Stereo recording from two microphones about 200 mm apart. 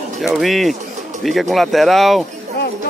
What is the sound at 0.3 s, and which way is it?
Speech, centre (ahead or behind).